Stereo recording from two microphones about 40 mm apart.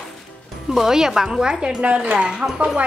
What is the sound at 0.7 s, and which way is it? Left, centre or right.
A woman's voice, centre.